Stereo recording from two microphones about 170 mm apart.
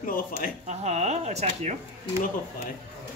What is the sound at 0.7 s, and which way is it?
Speech, 40° right (ahead or behind).